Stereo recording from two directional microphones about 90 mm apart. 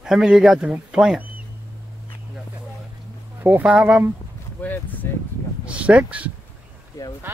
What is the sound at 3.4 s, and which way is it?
Speech, 20° right (ahead or behind).